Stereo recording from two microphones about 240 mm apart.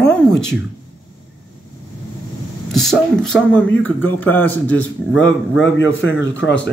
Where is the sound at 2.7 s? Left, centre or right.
Centre.